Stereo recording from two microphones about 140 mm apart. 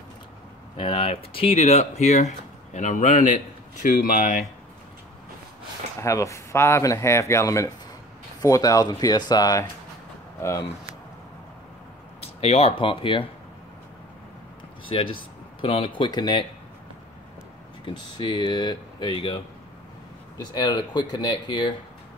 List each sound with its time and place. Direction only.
0.7 s speech: 40° left (ahead or behind); by 4.5 s 65° left (ahead or behind)
5.9 s speech: 20° left (ahead or behind)
12.2 s speech: 45° left (ahead or behind)
14.9 s speech: 40° left (ahead or behind)
17.8 s speech: 35° left (ahead or behind)
20.3 s speech: 30° left (ahead or behind)